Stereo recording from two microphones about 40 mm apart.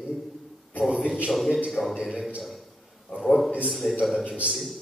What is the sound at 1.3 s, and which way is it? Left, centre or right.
Speech, centre.